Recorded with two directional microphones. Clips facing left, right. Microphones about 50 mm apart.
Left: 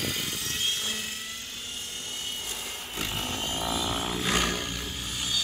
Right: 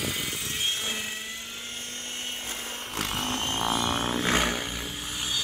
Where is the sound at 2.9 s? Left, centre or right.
Right.